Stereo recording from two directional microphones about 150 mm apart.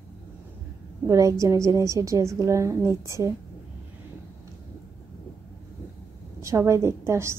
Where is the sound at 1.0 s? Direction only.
20° right (ahead or behind).